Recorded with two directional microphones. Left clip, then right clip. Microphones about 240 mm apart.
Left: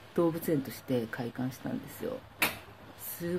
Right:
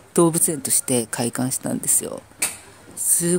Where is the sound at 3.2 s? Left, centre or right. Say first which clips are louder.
Right 11 dB; right.